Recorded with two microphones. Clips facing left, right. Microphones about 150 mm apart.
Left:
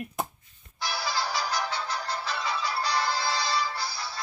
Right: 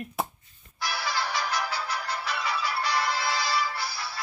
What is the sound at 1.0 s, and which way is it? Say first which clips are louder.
Music: even; 30° left (ahead or behind).